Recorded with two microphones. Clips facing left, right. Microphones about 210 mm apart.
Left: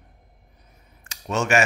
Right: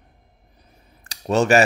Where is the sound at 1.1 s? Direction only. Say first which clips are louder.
Right 6 dB; 35° right (ahead or behind).